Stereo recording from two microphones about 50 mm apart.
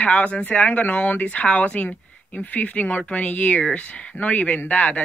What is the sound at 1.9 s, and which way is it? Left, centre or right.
Speech, left.